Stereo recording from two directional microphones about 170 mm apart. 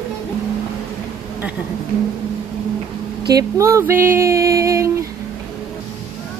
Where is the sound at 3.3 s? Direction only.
20° right (ahead or behind).